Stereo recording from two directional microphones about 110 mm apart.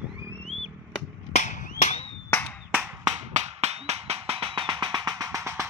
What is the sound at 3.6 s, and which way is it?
Music, 70° right (ahead or behind).